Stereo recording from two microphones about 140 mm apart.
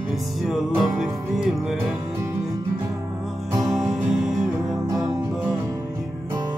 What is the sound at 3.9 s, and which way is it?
Music, 5° right (ahead or behind).